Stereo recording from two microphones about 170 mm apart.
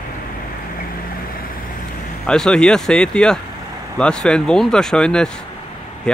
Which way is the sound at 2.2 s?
5° left (ahead or behind).